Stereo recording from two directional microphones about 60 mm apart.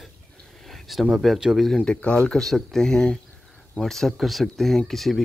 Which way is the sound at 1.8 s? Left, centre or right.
Centre.